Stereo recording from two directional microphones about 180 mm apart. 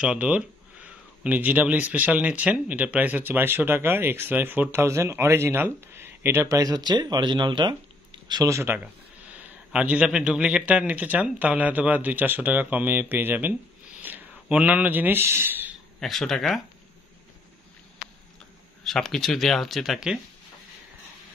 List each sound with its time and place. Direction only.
0.0 s speech: 5° right (ahead or behind)
16.0 s speech: centre (ahead or behind)
18.9 s speech: centre (ahead or behind)